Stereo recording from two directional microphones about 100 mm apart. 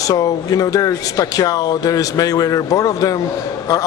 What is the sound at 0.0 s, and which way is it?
Speech, 35° left (ahead or behind).